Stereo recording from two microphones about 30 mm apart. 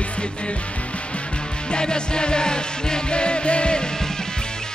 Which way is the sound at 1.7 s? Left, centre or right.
Left.